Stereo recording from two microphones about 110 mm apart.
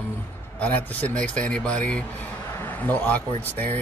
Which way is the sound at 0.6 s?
15° left (ahead or behind).